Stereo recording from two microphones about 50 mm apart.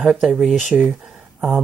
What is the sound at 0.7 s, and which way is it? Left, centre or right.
Speech, right.